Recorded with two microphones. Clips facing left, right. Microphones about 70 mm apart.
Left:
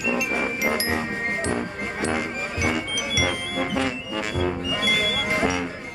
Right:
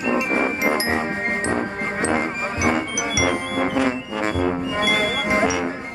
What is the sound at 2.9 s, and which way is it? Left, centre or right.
Music, centre.